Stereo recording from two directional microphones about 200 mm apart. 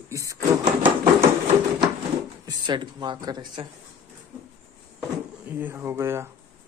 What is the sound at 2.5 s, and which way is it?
Speech, 20° right (ahead or behind).